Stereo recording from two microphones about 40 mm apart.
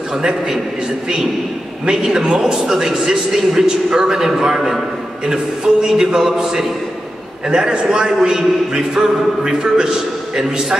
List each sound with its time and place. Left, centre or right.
0.2 s a man's voice: centre
1.9 s a man's voice: centre